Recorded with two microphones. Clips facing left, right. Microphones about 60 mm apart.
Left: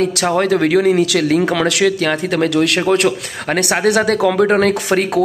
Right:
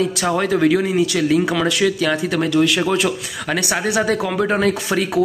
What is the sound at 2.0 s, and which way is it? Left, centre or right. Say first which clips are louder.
Speech: left 3 dB; left.